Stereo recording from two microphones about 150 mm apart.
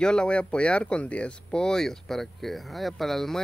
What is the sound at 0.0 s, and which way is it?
Speech, 5° left (ahead or behind).